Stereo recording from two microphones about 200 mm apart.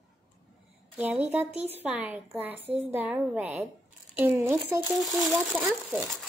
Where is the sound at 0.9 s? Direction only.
5° right (ahead or behind).